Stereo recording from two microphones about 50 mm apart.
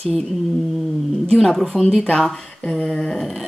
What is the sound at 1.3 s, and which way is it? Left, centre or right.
Speech, centre.